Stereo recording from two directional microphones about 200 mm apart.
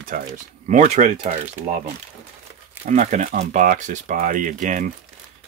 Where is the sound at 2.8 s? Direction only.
40° right (ahead or behind).